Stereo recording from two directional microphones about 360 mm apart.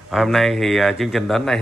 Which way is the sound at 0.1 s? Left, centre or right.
Centre.